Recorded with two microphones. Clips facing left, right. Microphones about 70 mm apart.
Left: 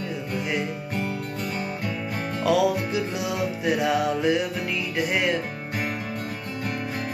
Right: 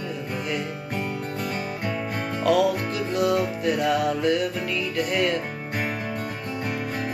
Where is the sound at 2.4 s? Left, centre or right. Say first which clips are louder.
Right 1 dB; centre.